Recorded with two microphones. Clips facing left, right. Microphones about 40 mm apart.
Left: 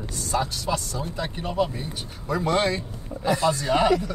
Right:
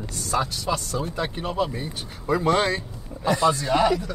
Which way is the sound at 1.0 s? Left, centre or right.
Right.